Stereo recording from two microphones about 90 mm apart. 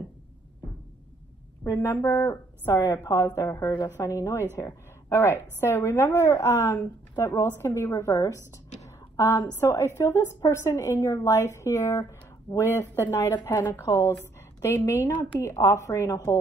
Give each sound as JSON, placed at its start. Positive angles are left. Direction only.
{"t": 1.7, "sound": "a woman's voice", "side_deg": 30}
{"t": 8.8, "sound": "a sound", "side_deg": 35}
{"t": 9.6, "sound": "a woman's voice", "side_deg": 30}
{"t": 13.8, "sound": "a woman's voice", "side_deg": 35}